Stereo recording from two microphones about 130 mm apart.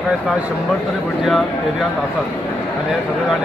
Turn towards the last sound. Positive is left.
turn(degrees=0)  # may be behind; listen again after turning